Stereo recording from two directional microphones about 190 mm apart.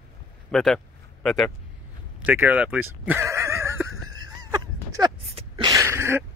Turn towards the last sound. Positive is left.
turn(degrees=-15)  # may be behind; listen again after turning